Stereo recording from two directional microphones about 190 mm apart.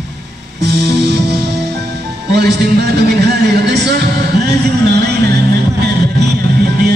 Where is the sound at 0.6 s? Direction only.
60° right (ahead or behind).